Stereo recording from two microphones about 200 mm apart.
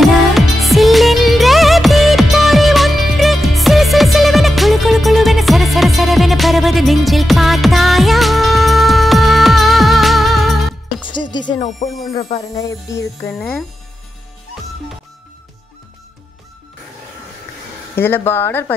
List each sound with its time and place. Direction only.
0.0 s music: centre (ahead or behind)
11.0 s music: 25° left (ahead or behind)
12.5 s music: 15° left (ahead or behind)
13.3 s speech: centre (ahead or behind)
17.9 s speech: 10° left (ahead or behind)